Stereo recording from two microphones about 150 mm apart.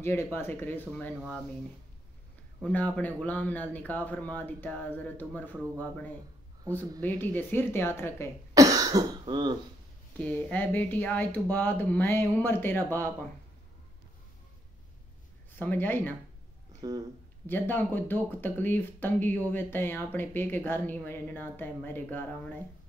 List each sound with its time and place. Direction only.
0.0 s speech: 15° left (ahead or behind)
2.6 s speech: 10° left (ahead or behind)
8.5 s cough: 25° right (ahead or behind)
10.1 s speech: 10° left (ahead or behind)
15.5 s speech: 10° left (ahead or behind)
16.8 s speech: 30° right (ahead or behind)
17.5 s speech: 15° left (ahead or behind)